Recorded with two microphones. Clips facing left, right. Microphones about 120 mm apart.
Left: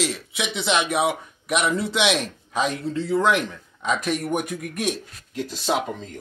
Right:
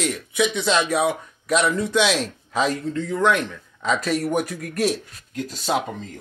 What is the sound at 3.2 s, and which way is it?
Speech, 25° left (ahead or behind).